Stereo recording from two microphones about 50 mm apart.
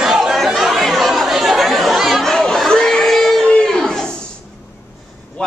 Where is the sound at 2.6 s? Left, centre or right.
Centre.